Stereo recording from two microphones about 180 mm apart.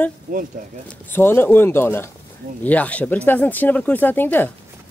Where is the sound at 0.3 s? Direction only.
50° right (ahead or behind).